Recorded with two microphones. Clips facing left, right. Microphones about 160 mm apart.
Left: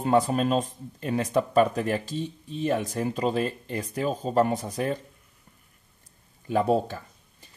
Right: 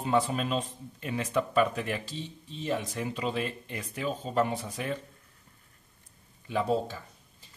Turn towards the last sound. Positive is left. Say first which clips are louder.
# left 4 dB
turn(degrees=55)  # may be behind; listen again after turning